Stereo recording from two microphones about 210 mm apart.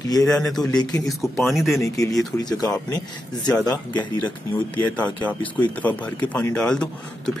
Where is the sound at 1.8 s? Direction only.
15° left (ahead or behind).